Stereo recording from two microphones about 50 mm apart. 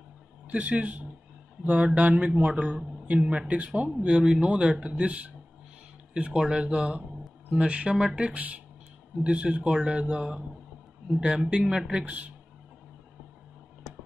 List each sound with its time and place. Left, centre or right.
0.5 s speech: right
4.0 s speech: centre
8.4 s speech: right